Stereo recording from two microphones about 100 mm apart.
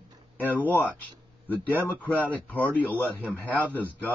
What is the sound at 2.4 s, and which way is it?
Speech, 15° left (ahead or behind).